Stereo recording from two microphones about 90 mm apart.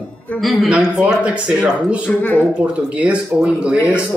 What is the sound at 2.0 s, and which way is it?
Speech, 20° left (ahead or behind).